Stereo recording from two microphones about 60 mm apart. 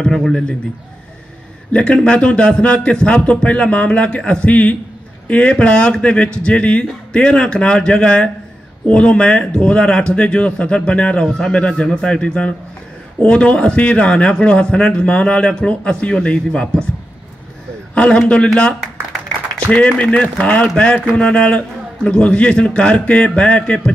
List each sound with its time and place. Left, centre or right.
0.0 s speech: centre
1.7 s a man's voice: centre
17.9 s a man's voice: centre